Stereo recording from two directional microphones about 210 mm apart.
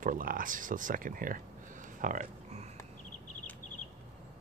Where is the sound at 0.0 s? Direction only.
40° right (ahead or behind).